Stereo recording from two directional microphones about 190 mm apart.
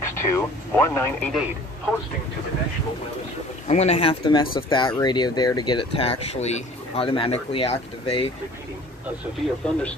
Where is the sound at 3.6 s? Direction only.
35° left (ahead or behind).